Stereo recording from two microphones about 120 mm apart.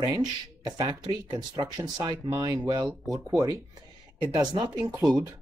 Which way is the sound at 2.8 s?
Centre (ahead or behind).